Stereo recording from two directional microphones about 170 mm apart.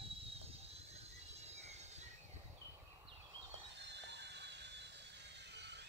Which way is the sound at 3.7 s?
90° right.